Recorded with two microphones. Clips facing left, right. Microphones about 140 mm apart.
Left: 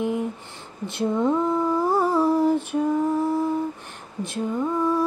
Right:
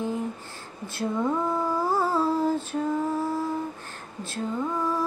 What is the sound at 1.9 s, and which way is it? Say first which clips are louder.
Female singing: left 4 dB; 15° left (ahead or behind).